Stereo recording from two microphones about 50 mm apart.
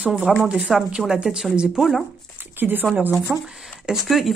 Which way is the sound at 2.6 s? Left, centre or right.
Right.